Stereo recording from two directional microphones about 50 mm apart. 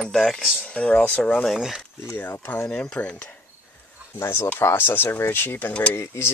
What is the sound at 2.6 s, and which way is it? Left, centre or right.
Speech, left.